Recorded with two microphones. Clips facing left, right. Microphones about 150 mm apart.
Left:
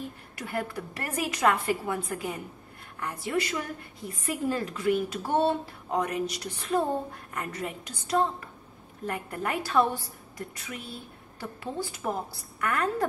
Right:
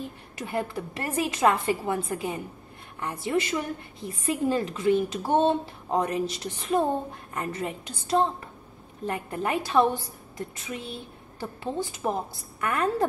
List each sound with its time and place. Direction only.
0.4 s a woman's voice: 20° right (ahead or behind)